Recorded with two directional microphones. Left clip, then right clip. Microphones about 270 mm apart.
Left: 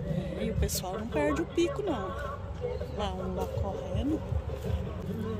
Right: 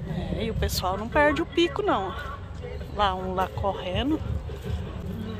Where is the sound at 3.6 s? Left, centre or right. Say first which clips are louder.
Right 9 dB; right.